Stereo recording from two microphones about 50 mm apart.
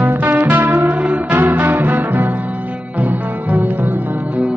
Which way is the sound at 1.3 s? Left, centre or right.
Right.